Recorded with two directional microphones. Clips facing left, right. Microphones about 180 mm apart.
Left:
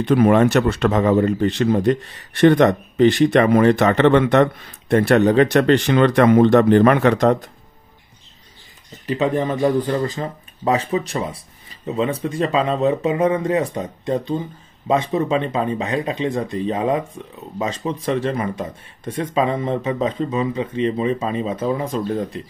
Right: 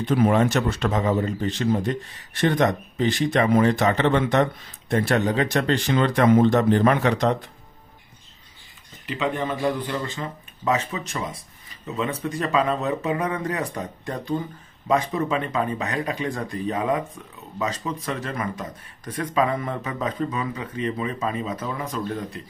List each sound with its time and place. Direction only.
0.0 s a man's voice: 65° left (ahead or behind); by 7.5 s 45° left (ahead or behind)
9.0 s speech: 40° left (ahead or behind)